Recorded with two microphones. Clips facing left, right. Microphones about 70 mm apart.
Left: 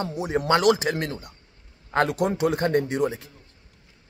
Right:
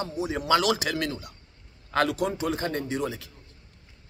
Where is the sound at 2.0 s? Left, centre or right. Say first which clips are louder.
Left 4 dB; left.